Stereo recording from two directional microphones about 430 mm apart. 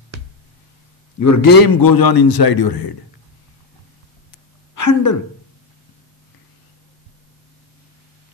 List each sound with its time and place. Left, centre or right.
1.2 s a man's voice: left
4.7 s a woman's voice: left